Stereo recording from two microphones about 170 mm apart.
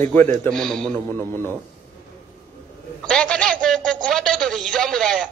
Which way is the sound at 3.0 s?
5° left (ahead or behind).